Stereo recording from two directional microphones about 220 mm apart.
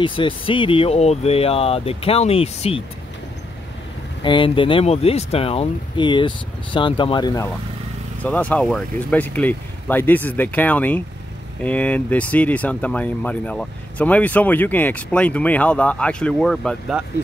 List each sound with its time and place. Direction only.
0.0 s speech: 20° left (ahead or behind)
4.2 s speech: 20° left (ahead or behind)
8.2 s speech: 5° left (ahead or behind)